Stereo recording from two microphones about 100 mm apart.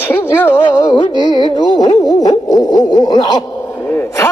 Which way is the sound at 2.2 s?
40° left (ahead or behind).